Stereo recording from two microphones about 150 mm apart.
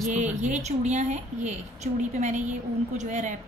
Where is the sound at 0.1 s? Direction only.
50° right (ahead or behind).